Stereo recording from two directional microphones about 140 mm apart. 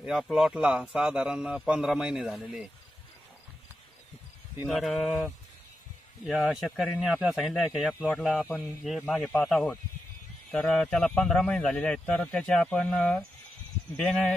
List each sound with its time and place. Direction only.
0.0 s a man's voice: 5° right (ahead or behind)
4.6 s speech: centre (ahead or behind)
6.2 s speech: centre (ahead or behind)
8.5 s a man's voice: 15° left (ahead or behind)
8.8 s a man's voice: centre (ahead or behind)